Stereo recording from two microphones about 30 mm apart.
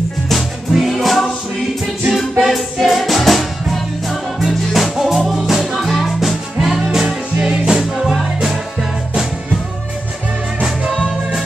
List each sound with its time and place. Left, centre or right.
0.3 s music: centre
4.5 s music: centre
4.9 s music: centre
7.3 s music: right
8.0 s music: centre